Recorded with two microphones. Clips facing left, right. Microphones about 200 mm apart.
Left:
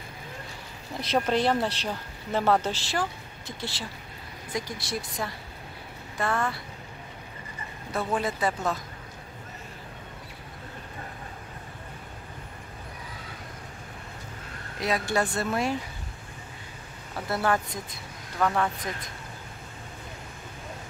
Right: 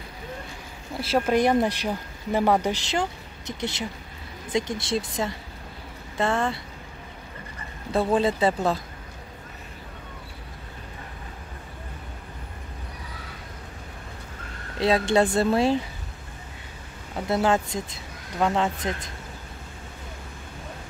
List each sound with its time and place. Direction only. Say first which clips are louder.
1.1 s speech: right 4 dB; 10° right (ahead or behind); by 6.6 s 30° right (ahead or behind)
7.9 s speech: right 7 dB; 30° right (ahead or behind)
14.8 s speech: right 6 dB; 25° right (ahead or behind)
17.3 s speech: right 4 dB; 20° right (ahead or behind)